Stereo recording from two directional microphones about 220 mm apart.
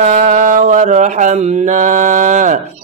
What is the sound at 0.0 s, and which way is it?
Mantra, 30° right (ahead or behind).